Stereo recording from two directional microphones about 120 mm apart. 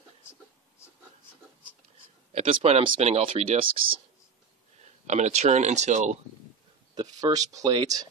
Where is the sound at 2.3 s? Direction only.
60° right (ahead or behind).